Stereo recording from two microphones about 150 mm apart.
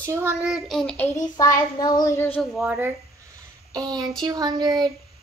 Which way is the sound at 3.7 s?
25° right (ahead or behind).